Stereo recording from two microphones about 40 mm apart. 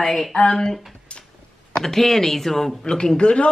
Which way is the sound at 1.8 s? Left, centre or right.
Centre.